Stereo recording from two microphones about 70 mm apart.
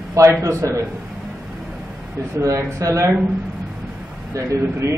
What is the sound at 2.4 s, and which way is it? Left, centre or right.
Speech, right.